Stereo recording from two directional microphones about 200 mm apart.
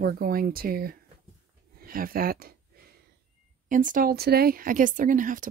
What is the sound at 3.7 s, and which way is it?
Speech, 40° right (ahead or behind).